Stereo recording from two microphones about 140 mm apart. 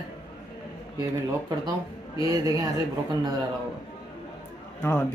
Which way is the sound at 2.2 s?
25° right (ahead or behind).